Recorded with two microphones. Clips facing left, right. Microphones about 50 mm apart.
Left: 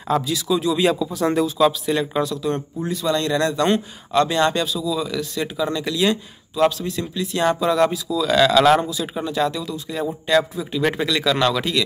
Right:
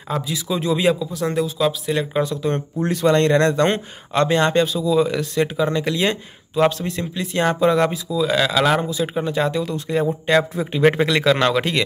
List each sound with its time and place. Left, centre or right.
0.1 s speech: centre
0.5 s speech: right
0.7 s speech: centre
1.1 s speech: centre
2.2 s speech: right
2.8 s speech: right; by 8.9 s centre
8.9 s speech: right
9.7 s speech: right